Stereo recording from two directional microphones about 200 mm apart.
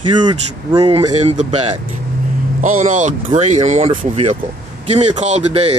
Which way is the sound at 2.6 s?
40° right (ahead or behind).